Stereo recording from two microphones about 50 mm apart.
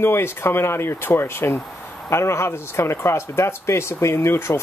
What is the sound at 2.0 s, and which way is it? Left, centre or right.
Speech, left.